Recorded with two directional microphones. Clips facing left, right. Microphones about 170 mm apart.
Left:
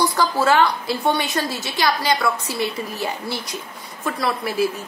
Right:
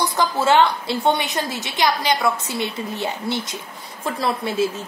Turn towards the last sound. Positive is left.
turn(degrees=-25)  # may be behind; listen again after turning